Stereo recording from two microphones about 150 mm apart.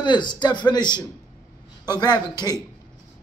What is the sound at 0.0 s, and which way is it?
A man's voice, 30° left (ahead or behind).